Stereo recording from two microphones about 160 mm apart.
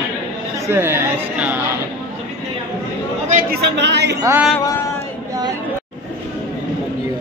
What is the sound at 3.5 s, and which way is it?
Speech, 90° right.